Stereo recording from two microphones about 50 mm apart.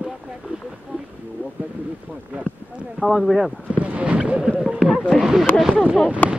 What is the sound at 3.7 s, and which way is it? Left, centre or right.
Speech, right.